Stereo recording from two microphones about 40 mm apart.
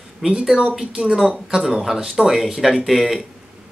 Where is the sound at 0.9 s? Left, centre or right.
Centre.